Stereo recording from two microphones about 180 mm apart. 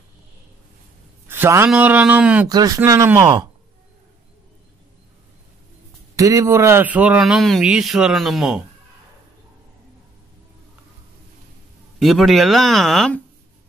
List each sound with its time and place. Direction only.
1.2 s a man's voice: 10° right (ahead or behind)
2.4 s speech: 20° right (ahead or behind)
6.1 s a man's voice: 20° right (ahead or behind); by 8.6 s centre (ahead or behind)
12.0 s a man's voice: centre (ahead or behind)